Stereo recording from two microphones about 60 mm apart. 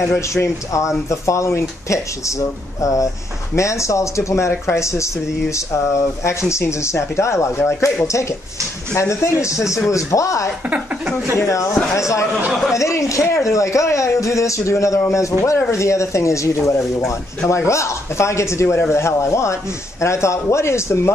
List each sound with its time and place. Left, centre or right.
0.4 s speech: left
6.2 s speech: left
8.9 s speech: left